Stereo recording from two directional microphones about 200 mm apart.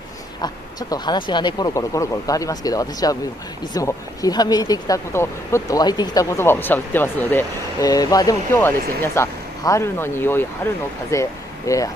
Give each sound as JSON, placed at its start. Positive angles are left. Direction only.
{"t": 0.4, "sound": "speech", "side_deg": 20}